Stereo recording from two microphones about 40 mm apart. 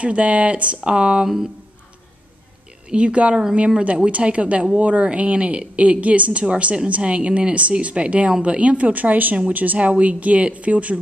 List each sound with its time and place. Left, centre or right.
0.0 s a woman's voice: right
2.9 s a woman's voice: right